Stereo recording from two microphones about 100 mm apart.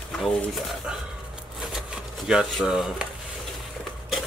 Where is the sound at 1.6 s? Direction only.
5° right (ahead or behind).